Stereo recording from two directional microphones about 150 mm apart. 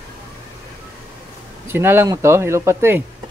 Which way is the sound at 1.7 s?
15° right (ahead or behind).